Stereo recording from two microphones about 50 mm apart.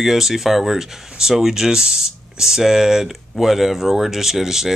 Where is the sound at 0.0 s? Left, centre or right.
Centre.